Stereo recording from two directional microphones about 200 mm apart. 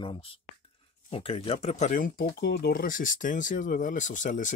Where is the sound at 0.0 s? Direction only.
25° left (ahead or behind).